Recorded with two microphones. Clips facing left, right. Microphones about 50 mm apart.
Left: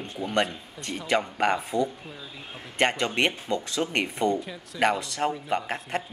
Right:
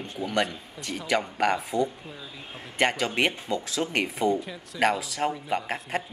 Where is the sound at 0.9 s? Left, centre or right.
Centre.